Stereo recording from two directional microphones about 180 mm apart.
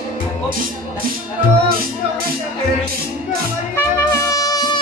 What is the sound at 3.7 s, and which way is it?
Music, 15° left (ahead or behind).